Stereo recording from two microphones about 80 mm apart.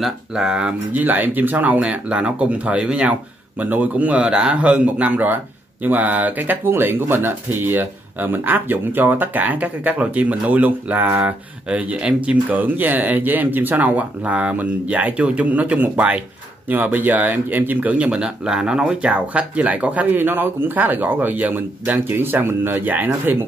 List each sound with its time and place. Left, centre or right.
0.0 s speech: centre
1.0 s speech: right